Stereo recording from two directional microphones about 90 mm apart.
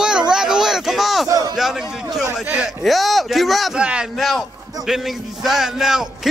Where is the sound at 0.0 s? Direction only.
10° right (ahead or behind).